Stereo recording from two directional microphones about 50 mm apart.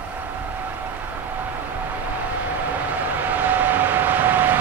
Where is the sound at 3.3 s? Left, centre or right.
Right.